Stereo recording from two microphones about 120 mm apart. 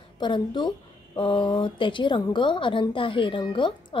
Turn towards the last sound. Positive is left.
turn(degrees=40)  # may be behind; listen again after turning